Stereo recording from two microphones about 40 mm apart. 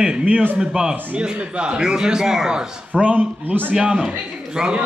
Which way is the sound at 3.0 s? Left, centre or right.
Right.